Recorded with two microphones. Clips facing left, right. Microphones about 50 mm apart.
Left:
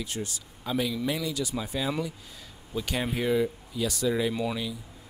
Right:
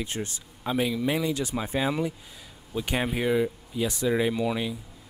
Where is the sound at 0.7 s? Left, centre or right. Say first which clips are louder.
Right 3 dB; right.